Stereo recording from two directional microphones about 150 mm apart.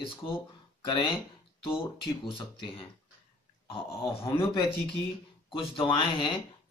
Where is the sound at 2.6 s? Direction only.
35° left (ahead or behind).